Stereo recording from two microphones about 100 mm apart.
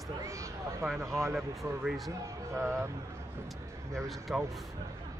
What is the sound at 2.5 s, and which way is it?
Speech, 30° right (ahead or behind).